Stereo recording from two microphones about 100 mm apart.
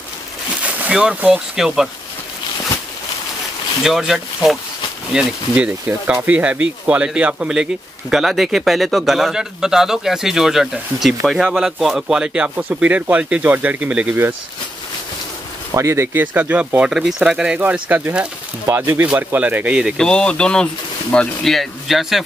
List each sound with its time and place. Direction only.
0.6 s speech: 15° right (ahead or behind)
3.8 s speech: 5° right (ahead or behind)
5.9 s speech: 20° right (ahead or behind)
15.7 s speech: 30° right (ahead or behind); by 20.0 s 10° right (ahead or behind)
20.0 s speech: 10° left (ahead or behind)